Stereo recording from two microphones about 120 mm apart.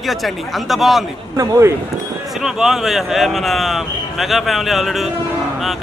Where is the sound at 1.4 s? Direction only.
25° right (ahead or behind).